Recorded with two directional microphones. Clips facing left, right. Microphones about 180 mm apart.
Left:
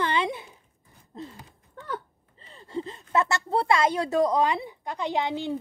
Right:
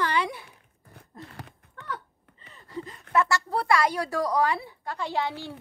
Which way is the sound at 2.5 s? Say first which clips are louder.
Left 4 dB; 30° left (ahead or behind).